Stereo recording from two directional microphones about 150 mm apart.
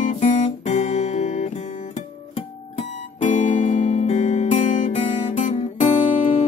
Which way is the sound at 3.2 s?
55° left (ahead or behind).